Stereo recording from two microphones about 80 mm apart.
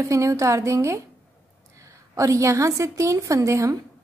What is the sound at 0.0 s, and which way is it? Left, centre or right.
A woman's voice, right.